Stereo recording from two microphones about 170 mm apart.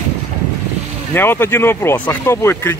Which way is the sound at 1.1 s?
15° left (ahead or behind).